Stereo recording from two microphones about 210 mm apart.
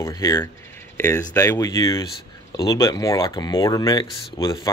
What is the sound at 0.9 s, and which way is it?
Speech, 10° left (ahead or behind).